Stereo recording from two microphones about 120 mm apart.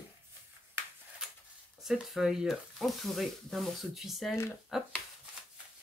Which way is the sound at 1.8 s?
5° right (ahead or behind).